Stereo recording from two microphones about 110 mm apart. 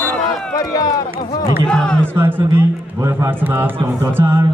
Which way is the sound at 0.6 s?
35° left (ahead or behind).